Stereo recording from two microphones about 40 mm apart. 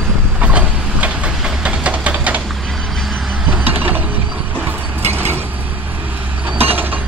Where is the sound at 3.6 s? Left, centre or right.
Right.